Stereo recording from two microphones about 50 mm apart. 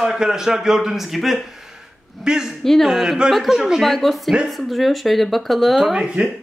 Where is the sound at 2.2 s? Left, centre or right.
Centre.